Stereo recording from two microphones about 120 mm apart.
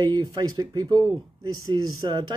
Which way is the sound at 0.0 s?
35° right (ahead or behind).